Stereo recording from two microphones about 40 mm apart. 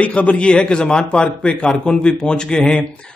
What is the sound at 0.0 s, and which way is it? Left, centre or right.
A man's voice, left.